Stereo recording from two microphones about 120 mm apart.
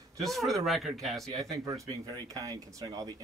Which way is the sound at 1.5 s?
25° right (ahead or behind).